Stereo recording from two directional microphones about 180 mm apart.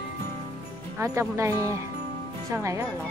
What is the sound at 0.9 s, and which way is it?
Speech, 15° right (ahead or behind).